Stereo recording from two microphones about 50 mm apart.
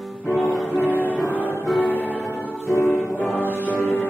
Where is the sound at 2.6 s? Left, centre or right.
Left.